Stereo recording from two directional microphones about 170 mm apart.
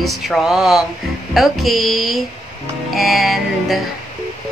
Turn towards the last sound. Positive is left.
turn(degrees=0)  # may be behind; listen again after turning